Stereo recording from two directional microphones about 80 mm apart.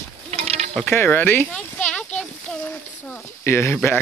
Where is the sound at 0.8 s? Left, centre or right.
Left.